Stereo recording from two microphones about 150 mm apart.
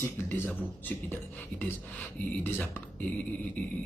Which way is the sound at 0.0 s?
15° left (ahead or behind).